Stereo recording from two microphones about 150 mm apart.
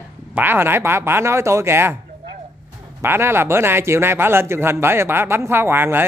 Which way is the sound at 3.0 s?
15° right (ahead or behind).